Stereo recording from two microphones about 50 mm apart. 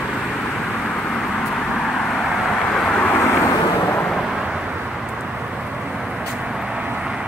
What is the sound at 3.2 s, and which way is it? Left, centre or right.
Vehicle, left.